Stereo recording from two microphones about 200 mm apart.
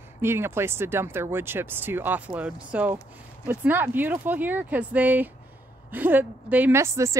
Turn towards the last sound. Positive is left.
turn(degrees=-15)  # may be behind; listen again after turning